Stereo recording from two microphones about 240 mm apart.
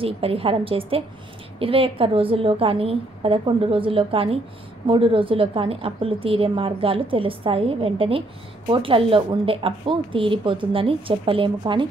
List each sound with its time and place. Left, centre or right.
0.0 s a woman's voice: right